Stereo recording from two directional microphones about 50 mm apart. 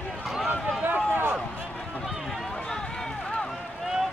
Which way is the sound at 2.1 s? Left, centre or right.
Centre.